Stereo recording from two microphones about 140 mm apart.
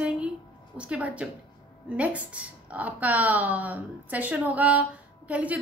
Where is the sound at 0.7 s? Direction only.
10° right (ahead or behind).